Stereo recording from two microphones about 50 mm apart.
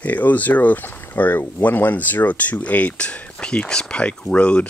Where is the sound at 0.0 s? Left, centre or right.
Left.